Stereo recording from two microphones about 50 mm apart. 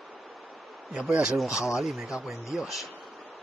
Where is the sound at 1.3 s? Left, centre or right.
Centre.